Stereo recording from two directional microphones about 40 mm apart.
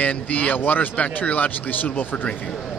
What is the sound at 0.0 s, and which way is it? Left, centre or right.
Speech, left.